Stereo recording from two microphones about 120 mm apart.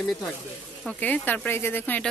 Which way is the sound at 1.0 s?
15° left (ahead or behind).